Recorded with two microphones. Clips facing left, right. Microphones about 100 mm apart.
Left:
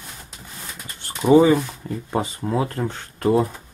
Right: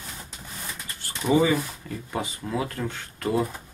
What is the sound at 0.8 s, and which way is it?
Speech, 25° left (ahead or behind).